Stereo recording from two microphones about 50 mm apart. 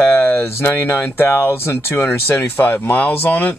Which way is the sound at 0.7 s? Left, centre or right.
Left.